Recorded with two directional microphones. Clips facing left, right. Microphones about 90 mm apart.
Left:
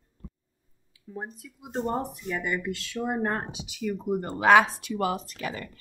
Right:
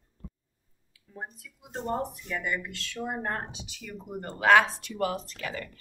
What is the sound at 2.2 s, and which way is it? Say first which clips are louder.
Speech: left 3 dB; 15° left (ahead or behind).